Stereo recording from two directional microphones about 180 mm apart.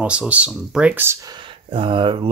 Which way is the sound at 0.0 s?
5° right (ahead or behind).